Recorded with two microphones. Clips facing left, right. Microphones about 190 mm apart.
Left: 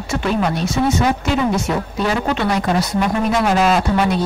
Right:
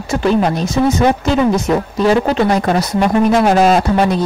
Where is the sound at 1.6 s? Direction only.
35° right (ahead or behind).